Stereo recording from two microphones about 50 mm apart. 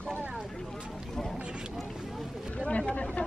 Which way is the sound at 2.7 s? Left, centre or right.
Left.